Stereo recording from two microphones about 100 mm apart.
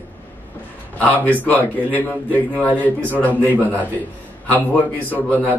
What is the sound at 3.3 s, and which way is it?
Speech, 15° right (ahead or behind).